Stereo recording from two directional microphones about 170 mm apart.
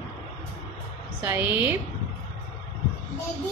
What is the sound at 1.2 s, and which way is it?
Speech, 15° right (ahead or behind).